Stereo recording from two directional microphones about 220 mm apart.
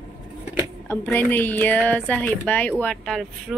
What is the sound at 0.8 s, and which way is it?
A woman's voice, 10° left (ahead or behind).